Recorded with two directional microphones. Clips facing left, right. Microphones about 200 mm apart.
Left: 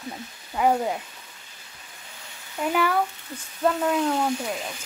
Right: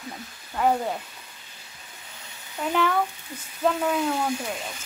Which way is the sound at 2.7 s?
5° left (ahead or behind).